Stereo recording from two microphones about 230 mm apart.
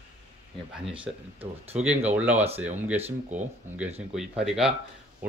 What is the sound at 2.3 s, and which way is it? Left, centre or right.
Speech, right.